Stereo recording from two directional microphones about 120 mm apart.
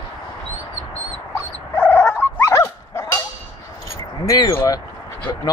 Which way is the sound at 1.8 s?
20° left (ahead or behind).